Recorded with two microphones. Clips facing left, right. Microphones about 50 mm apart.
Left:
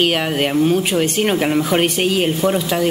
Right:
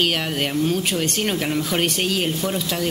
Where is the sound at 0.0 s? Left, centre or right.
Centre.